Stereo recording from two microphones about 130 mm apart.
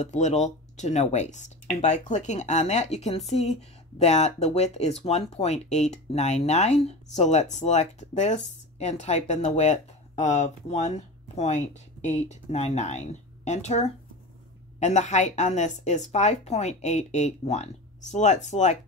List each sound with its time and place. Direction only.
0.0 s speech: 65° left (ahead or behind)